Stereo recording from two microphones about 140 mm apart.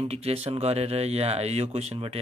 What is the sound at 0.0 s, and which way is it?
Speech, 45° right (ahead or behind).